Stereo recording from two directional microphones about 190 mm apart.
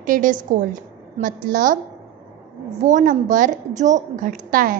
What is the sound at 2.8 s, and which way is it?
A woman's voice, 40° right (ahead or behind).